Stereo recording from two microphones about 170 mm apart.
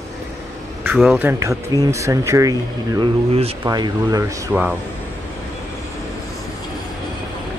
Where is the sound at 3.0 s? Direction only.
35° right (ahead or behind).